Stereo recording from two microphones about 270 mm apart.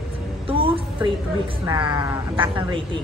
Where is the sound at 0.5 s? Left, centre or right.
Centre.